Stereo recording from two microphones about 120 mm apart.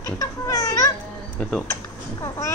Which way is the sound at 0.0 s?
30° left (ahead or behind).